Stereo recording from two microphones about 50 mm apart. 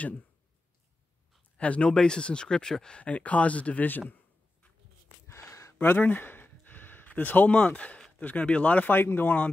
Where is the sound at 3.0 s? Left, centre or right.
Left.